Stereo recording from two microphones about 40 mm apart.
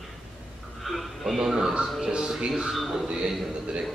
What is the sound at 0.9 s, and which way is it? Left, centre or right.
Music, centre.